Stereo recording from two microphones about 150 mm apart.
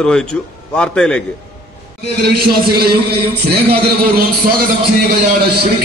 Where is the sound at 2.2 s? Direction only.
90° right.